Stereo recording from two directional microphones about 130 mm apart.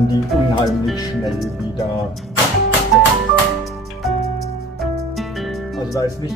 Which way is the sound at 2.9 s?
Centre (ahead or behind).